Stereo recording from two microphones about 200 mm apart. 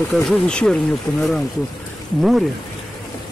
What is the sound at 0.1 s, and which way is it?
Speech, 5° left (ahead or behind).